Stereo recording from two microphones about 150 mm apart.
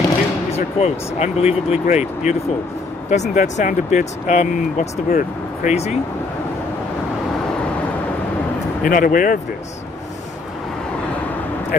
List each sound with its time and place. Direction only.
0.5 s speech: 45° left (ahead or behind)
8.8 s speech: 65° left (ahead or behind)